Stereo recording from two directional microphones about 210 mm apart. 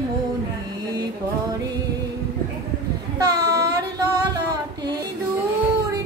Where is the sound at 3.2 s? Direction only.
15° right (ahead or behind).